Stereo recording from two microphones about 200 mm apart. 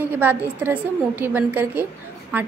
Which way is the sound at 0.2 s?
10° right (ahead or behind).